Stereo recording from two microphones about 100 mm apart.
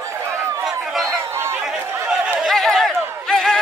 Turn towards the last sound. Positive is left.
turn(degrees=0)  # may be behind; listen again after turning